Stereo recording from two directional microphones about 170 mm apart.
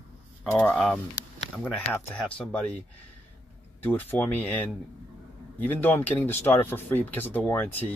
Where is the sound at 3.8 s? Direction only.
10° left (ahead or behind).